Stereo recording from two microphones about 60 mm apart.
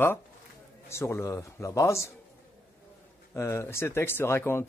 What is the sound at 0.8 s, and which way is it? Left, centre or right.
A man's voice, left.